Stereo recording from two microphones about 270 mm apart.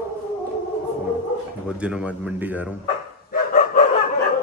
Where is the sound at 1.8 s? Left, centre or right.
Centre.